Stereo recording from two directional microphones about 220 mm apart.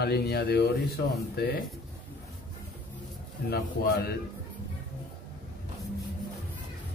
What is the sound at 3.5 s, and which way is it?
Speech, 45° left (ahead or behind).